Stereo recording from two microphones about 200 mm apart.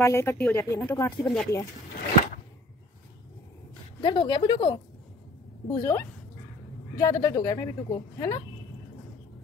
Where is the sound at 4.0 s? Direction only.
25° left (ahead or behind).